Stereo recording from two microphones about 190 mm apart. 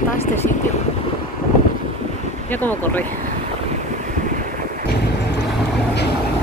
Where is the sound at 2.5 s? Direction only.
10° left (ahead or behind).